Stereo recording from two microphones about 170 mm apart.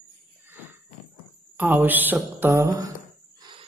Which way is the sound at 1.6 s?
10° right (ahead or behind).